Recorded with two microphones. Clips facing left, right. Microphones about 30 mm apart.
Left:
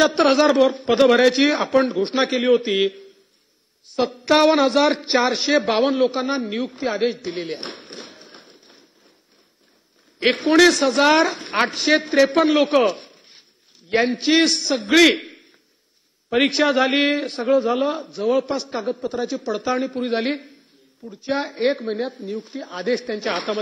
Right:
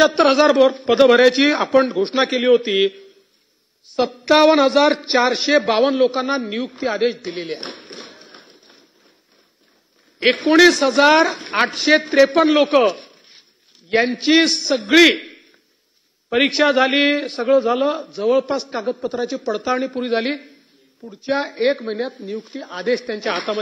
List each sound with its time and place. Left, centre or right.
0.0 s a man's voice: centre
7.8 s a sound: centre
10.1 s a man's voice: centre